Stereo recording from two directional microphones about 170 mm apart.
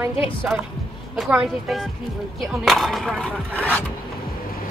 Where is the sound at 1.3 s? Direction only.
Centre (ahead or behind).